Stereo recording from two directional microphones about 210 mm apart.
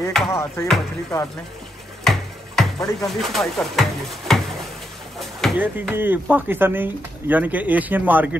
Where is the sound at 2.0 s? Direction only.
Centre (ahead or behind).